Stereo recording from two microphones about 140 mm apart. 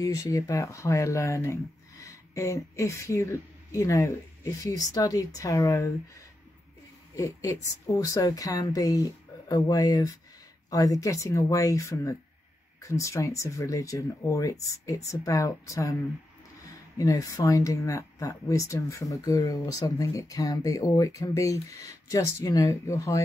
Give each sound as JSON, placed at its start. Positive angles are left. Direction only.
{"t": 0.0, "sound": "speech", "side_deg": 25}
{"t": 7.2, "sound": "speech", "side_deg": 25}
{"t": 17.0, "sound": "speech", "side_deg": 25}